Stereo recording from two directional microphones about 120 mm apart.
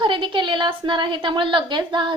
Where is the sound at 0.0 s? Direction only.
40° right (ahead or behind).